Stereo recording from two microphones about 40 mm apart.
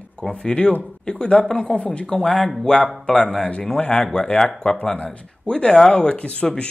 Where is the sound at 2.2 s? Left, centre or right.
Centre.